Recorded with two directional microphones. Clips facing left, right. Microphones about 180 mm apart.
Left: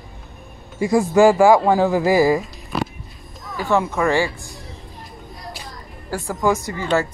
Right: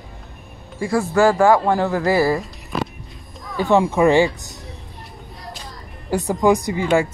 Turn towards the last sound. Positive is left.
turn(degrees=-10)  # may be behind; listen again after turning